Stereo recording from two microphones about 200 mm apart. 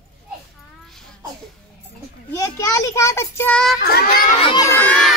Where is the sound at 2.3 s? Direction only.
15° left (ahead or behind).